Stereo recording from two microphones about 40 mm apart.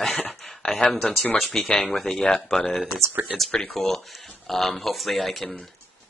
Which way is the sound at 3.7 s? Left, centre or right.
Centre.